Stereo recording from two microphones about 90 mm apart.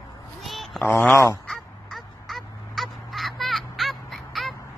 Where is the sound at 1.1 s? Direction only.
30° left (ahead or behind).